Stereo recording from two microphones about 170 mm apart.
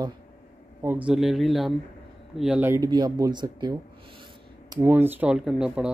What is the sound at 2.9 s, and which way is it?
Speech, 25° right (ahead or behind).